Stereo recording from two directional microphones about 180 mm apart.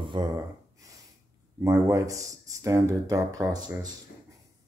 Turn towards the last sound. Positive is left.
turn(degrees=-20)  # may be behind; listen again after turning